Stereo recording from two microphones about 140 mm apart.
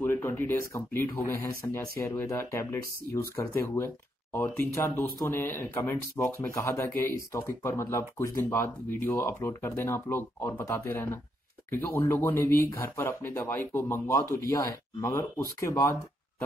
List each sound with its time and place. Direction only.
0.0 s speech: 15° left (ahead or behind)